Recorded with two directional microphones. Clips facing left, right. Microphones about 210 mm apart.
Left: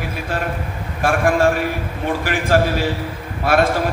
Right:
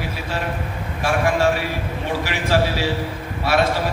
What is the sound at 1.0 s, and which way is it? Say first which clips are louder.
A man's voice: left 3 dB; 50° left (ahead or behind).